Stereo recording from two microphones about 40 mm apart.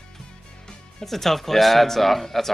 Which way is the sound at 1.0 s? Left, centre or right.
Centre.